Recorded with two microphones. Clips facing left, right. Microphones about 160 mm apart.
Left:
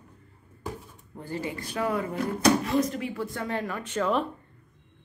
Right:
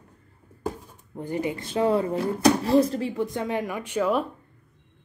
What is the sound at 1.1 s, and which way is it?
Speech, 20° right (ahead or behind).